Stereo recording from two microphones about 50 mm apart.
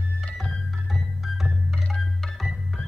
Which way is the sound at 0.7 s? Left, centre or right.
Centre.